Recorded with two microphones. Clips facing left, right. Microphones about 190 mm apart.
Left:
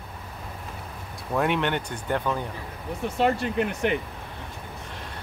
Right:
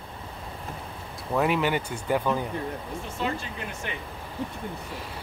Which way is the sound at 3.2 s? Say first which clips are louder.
Left 9 dB; 65° left (ahead or behind).